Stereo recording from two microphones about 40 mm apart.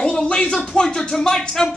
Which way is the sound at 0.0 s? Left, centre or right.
Centre.